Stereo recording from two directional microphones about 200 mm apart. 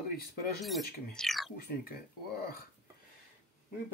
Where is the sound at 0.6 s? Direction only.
Centre (ahead or behind).